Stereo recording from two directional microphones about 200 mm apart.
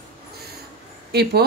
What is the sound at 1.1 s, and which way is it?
Speech, 55° right (ahead or behind).